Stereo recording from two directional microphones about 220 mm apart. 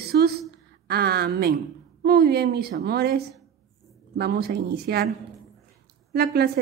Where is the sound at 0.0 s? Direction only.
45° right (ahead or behind).